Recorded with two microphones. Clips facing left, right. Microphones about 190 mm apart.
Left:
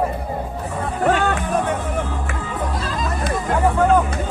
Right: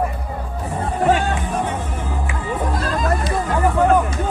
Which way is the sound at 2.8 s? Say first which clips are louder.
Right 4 dB; 55° right (ahead or behind).